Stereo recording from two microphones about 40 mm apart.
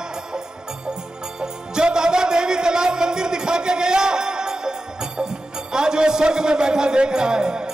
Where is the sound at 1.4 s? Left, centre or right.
Centre.